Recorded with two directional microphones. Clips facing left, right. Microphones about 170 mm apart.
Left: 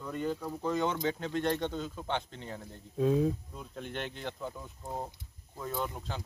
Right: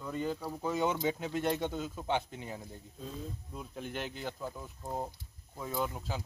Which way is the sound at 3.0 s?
80° left.